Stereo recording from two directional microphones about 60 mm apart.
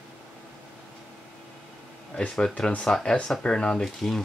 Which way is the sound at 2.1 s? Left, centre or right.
Centre.